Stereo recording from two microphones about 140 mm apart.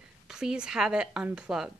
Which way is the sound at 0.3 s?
5° right (ahead or behind).